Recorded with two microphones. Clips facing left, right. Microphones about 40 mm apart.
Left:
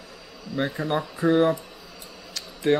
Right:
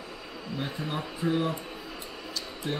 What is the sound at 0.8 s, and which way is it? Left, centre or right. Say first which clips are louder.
Speech: left 7 dB; left.